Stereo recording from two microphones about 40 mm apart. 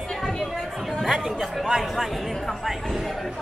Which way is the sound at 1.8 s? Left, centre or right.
Centre.